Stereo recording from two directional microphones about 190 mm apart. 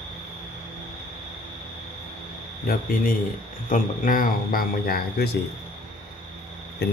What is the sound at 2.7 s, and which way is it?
Speech, 55° left (ahead or behind).